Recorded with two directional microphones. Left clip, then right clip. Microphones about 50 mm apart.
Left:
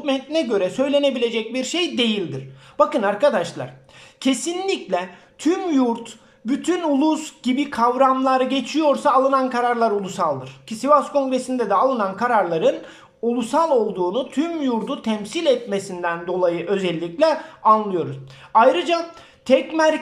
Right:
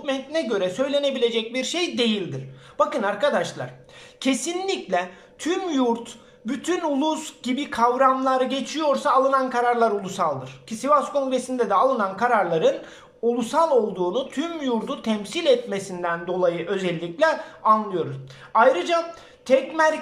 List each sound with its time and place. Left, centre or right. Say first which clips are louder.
0.0 s speech: left 4 dB; left
4.2 s speech: left 2 dB; centre
5.4 s a man's voice: left 4 dB; left
5.7 s speech: left 2 dB; left
7.9 s a man's voice: left 3 dB; left
9.8 s speech: left 1 dB; centre
15.9 s speech: left 1 dB; centre
16.6 s speech: left 3 dB; left
17.6 s a man's voice: left 3 dB; left